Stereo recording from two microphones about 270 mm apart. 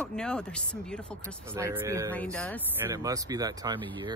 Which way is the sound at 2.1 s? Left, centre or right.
Centre.